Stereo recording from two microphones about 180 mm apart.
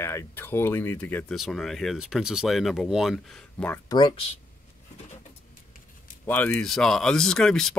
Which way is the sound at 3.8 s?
25° left (ahead or behind).